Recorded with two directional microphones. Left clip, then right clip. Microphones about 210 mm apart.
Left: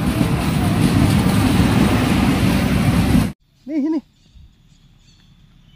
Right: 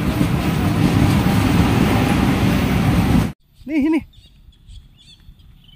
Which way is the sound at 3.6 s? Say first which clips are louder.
Right 3 dB; 30° right (ahead or behind).